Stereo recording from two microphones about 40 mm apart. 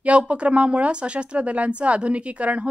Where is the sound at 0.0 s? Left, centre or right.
Right.